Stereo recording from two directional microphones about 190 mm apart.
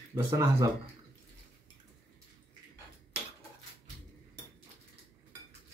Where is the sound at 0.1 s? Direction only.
15° right (ahead or behind).